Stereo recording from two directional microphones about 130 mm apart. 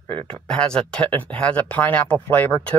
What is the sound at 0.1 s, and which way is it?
Speech, 10° left (ahead or behind).